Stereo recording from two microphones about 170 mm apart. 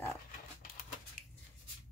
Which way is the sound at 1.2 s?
50° left (ahead or behind).